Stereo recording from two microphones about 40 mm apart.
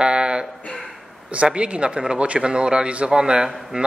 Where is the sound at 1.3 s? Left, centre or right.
Right.